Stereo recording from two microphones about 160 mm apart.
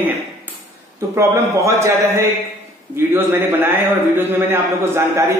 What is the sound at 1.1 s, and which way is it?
A man's voice, 15° right (ahead or behind).